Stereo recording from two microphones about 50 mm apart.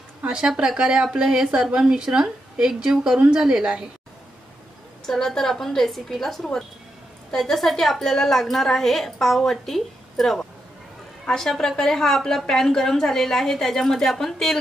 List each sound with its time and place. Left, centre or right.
0.2 s a woman's voice: centre
5.0 s a woman's voice: centre